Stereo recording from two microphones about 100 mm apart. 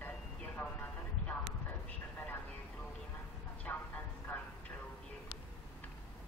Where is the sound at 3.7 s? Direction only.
20° left (ahead or behind).